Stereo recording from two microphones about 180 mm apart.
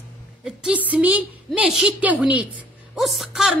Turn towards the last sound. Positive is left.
turn(degrees=0)  # may be behind; listen again after turning